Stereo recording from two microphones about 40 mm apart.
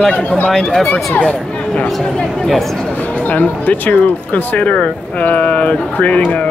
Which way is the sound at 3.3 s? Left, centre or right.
Left.